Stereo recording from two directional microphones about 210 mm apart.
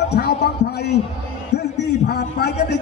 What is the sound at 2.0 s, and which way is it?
Speech, 50° left (ahead or behind).